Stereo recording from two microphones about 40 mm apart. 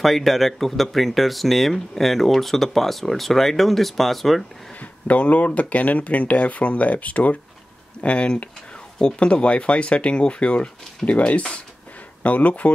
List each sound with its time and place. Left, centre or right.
0.0 s speech: centre
5.0 s speech: left